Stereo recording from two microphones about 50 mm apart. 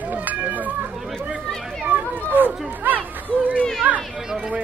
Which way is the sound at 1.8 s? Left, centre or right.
Right.